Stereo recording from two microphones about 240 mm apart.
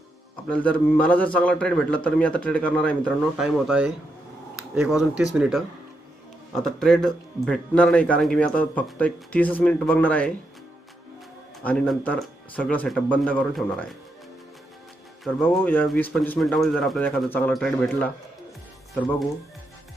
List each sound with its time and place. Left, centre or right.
0.5 s speech: centre
11.6 s speech: centre
15.2 s speech: centre